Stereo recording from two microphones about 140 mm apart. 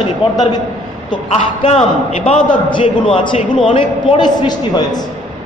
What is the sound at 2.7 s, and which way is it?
A man's voice, 35° left (ahead or behind).